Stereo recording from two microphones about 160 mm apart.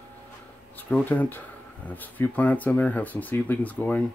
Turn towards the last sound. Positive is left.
turn(degrees=10)  # may be behind; listen again after turning